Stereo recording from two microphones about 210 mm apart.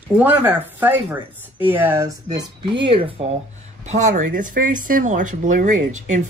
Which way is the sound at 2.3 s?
25° right (ahead or behind).